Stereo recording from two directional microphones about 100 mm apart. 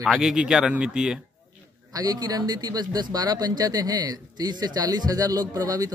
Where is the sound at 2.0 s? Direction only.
40° right (ahead or behind).